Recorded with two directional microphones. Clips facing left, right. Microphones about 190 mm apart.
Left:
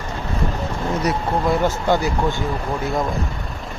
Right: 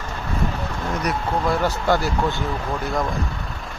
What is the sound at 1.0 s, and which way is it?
Speech, 20° left (ahead or behind).